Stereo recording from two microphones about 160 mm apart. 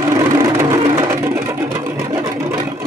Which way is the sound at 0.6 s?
20° right (ahead or behind).